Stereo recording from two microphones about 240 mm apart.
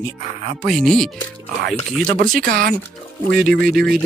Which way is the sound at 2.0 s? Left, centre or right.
Right.